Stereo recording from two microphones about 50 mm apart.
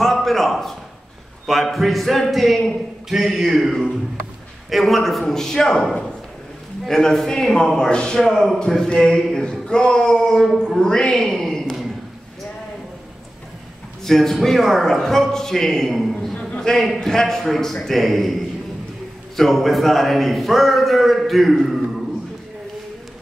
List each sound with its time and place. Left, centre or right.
0.0 s a sound: centre
1.4 s a man's voice: centre
14.0 s a man's voice: centre
16.3 s a sound: centre
17.0 s a man's voice: centre
19.3 s a man's voice: centre